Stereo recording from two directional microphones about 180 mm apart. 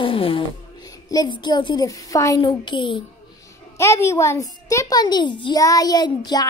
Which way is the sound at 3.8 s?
15° left (ahead or behind).